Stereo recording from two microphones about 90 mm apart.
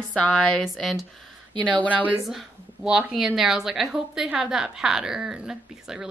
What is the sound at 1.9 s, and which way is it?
Speech, 15° right (ahead or behind).